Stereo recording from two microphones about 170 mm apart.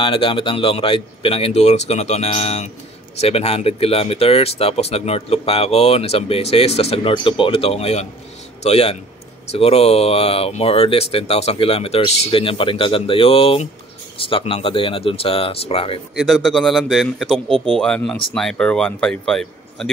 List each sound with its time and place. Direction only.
0.0 s speech: 30° left (ahead or behind)
16.2 s a man's voice: centre (ahead or behind)